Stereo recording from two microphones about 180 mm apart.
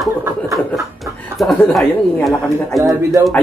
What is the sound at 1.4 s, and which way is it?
Speech, centre (ahead or behind).